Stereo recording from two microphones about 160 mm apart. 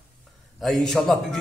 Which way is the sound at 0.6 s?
Centre (ahead or behind).